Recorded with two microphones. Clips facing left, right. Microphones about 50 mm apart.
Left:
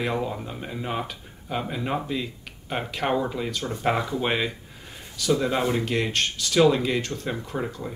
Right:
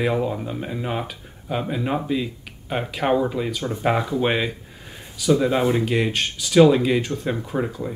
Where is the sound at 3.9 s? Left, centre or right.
Centre.